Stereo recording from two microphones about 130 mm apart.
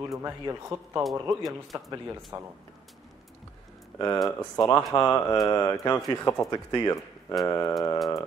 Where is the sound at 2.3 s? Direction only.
20° right (ahead or behind).